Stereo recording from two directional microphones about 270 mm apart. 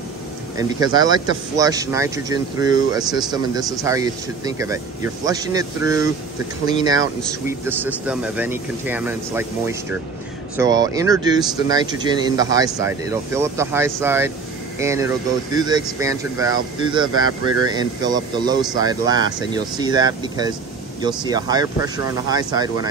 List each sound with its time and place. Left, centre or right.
0.6 s speech: centre